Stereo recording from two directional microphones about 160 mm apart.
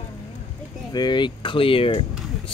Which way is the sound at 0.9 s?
30° left (ahead or behind).